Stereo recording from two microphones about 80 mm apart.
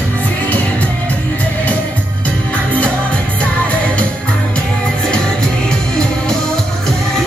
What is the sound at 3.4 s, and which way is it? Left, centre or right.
Music, centre.